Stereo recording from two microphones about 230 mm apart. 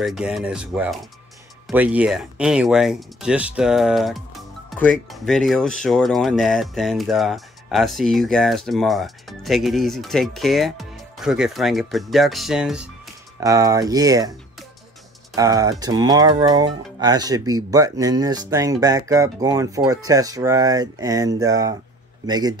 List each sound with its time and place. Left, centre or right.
0.0 s speech: centre
13.4 s speech: centre
15.3 s speech: centre